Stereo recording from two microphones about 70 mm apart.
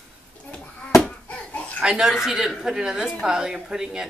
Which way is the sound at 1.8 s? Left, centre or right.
Centre.